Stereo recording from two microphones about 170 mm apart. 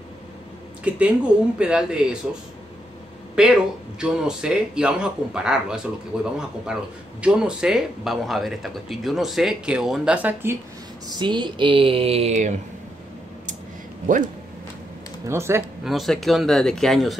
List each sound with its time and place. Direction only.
0.8 s speech: 10° right (ahead or behind)
3.4 s speech: 5° right (ahead or behind)
11.1 s speech: 25° right (ahead or behind); by 12.5 s 45° right (ahead or behind)
14.0 s speech: 50° right (ahead or behind)
15.2 s speech: 15° right (ahead or behind)
15.8 s speech: centre (ahead or behind)